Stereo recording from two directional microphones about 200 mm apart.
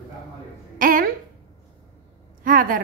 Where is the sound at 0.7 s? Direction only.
45° right (ahead or behind).